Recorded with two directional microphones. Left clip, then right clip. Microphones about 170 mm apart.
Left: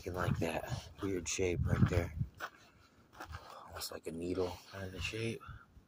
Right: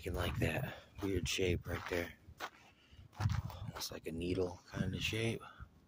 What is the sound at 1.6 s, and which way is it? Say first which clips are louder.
Speech: left 5 dB; 45° left (ahead or behind).